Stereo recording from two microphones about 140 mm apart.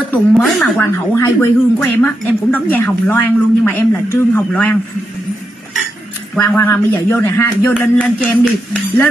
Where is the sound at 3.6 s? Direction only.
15° left (ahead or behind).